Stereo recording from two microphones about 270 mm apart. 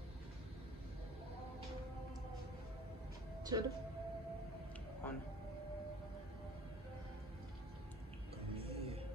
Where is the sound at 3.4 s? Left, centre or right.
Centre.